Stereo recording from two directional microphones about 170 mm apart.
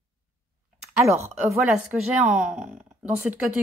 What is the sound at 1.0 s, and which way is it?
A woman's voice, 15° right (ahead or behind).